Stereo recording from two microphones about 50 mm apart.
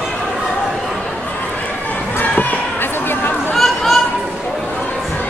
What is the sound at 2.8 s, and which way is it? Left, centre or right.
Chatter, left.